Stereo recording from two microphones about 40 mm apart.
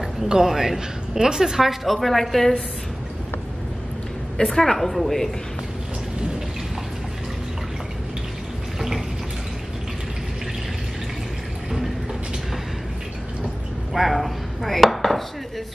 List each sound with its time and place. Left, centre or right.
0.3 s a woman's voice: centre
4.6 s a woman's voice: centre
8.7 s water tap: centre
13.9 s dishes: centre